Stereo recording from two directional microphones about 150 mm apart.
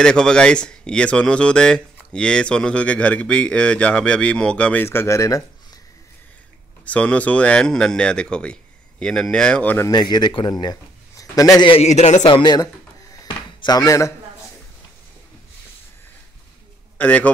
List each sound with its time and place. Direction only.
0.0 s speech: 5° left (ahead or behind)
6.8 s speech: 10° left (ahead or behind)
9.8 s speech: 25° left (ahead or behind)
10.6 s a sound: 25° left (ahead or behind)
11.7 s a man's voice: 45° left (ahead or behind)
12.3 s speech: 30° left (ahead or behind)
13.1 s a sound: 25° left (ahead or behind)
17.0 s speech: 10° left (ahead or behind)